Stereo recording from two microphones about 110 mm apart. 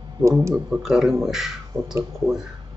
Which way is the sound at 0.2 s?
35° right (ahead or behind).